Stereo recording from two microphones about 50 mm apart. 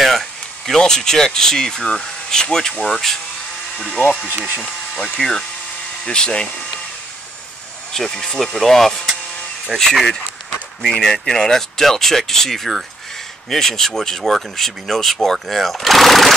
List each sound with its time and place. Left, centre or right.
0.0 s a sound: centre
0.7 s speech: centre
3.9 s speech: left
7.9 s speech: centre